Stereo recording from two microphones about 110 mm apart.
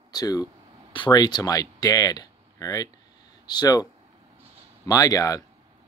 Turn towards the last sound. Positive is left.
turn(degrees=35)  # may be behind; listen again after turning